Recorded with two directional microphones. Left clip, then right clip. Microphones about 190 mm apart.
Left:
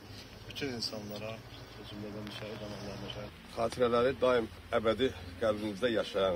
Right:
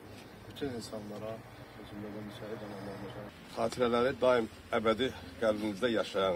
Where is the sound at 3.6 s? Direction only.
15° right (ahead or behind).